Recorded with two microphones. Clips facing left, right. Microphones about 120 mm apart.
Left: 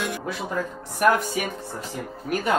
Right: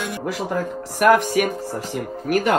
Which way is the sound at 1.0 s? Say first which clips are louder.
Right 5 dB; 70° right (ahead or behind).